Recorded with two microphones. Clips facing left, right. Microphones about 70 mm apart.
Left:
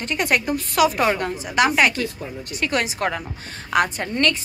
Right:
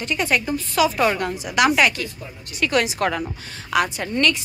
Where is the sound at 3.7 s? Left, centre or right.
Left.